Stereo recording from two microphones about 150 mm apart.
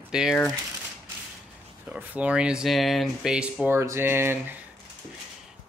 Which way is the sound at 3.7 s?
15° right (ahead or behind).